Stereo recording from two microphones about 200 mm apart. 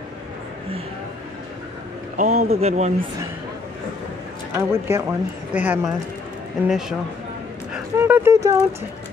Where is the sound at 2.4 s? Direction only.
35° right (ahead or behind).